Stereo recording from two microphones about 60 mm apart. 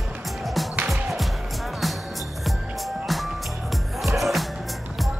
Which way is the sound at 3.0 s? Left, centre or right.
Centre.